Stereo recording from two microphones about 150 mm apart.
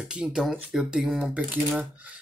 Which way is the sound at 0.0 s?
5° right (ahead or behind).